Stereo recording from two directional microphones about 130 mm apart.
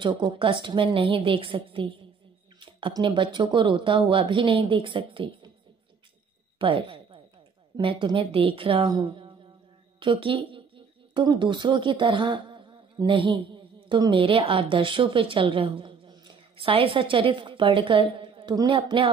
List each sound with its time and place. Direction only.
0.0 s speech: 40° right (ahead or behind)
6.6 s a woman's voice: 40° right (ahead or behind)
9.9 s a sound: 45° right (ahead or behind)
11.2 s a woman's voice: 35° right (ahead or behind)
14.2 s a woman's voice: 45° right (ahead or behind)